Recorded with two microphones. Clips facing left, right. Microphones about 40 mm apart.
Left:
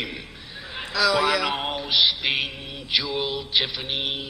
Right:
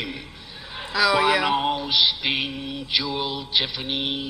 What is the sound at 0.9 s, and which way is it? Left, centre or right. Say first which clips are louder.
Speech: right 2 dB; centre.